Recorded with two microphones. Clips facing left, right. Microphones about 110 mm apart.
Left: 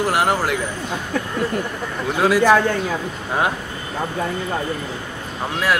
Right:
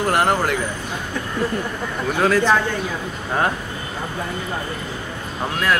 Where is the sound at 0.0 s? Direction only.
5° left (ahead or behind).